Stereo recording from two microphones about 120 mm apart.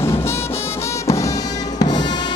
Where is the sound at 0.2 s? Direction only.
20° left (ahead or behind).